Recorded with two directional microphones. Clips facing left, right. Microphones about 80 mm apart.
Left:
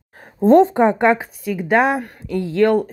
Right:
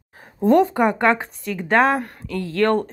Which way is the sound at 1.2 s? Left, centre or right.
Centre.